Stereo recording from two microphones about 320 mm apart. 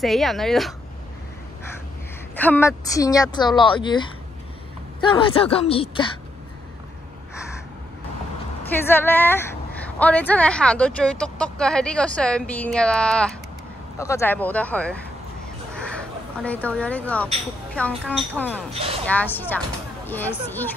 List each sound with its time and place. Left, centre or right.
0.0 s speech: centre
2.3 s a woman's voice: centre
8.8 s a woman's voice: centre
15.7 s a sound: centre
17.7 s speech: centre
18.7 s speech: centre
19.0 s speech: centre